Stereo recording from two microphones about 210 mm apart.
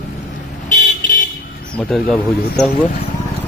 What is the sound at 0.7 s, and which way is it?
Car, 40° left (ahead or behind).